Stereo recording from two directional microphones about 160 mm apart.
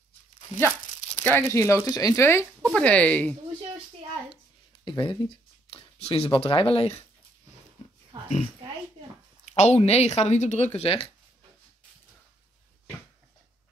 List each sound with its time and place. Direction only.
1.2 s speech: 15° left (ahead or behind)
4.8 s speech: 30° left (ahead or behind)
9.5 s speech: 45° left (ahead or behind)